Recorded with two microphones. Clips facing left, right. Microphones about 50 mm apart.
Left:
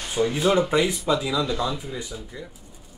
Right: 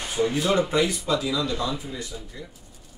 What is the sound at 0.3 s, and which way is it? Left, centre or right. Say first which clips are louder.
Speech: left 4 dB; centre.